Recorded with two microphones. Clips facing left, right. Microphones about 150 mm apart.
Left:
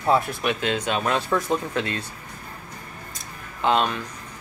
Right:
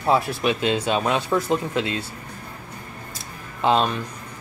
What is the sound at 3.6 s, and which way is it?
Speech, 30° right (ahead or behind).